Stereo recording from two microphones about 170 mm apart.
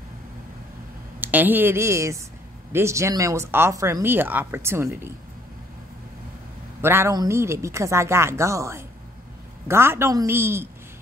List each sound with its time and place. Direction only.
1.2 s speech: 10° right (ahead or behind)
6.8 s speech: 15° right (ahead or behind)